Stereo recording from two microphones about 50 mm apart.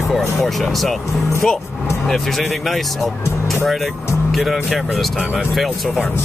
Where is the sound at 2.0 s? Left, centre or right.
Centre.